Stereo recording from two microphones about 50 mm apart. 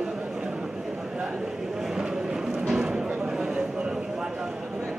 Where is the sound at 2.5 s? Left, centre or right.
Centre.